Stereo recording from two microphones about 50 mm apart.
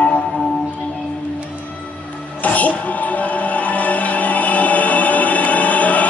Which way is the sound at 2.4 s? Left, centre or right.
Left.